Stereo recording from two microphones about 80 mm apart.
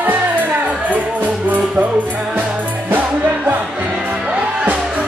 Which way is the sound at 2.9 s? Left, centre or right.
Right.